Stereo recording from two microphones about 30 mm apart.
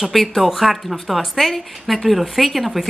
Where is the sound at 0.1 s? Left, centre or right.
Centre.